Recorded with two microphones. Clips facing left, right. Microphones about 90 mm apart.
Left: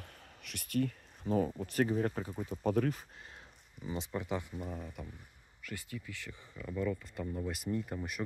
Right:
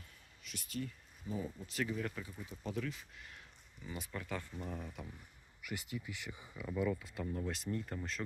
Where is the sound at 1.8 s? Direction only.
40° left (ahead or behind).